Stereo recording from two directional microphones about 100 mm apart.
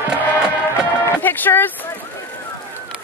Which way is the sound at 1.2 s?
20° left (ahead or behind).